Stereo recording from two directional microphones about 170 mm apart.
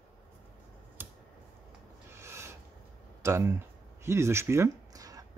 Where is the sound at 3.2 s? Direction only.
15° right (ahead or behind).